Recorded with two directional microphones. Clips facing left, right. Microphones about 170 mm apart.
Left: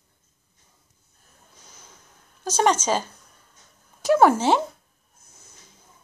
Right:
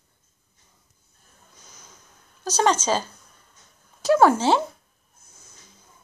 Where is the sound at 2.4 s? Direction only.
25° left (ahead or behind).